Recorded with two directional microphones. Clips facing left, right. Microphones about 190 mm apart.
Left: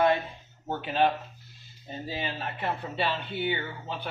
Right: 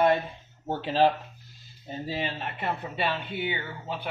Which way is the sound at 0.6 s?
30° right (ahead or behind).